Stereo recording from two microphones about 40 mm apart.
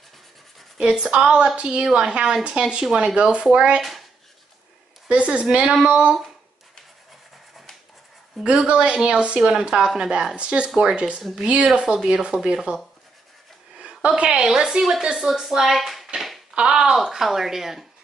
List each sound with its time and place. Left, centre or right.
0.7 s speech: centre
1.1 s a woman's voice: right; by 3.0 s centre
3.2 s speech: right
5.0 s speech: right
8.6 s speech: right
10.3 s speech: right
13.7 s a sound: right
14.4 s speech: centre